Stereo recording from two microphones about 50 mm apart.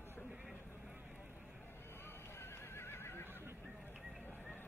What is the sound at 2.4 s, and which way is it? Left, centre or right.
Neigh, left.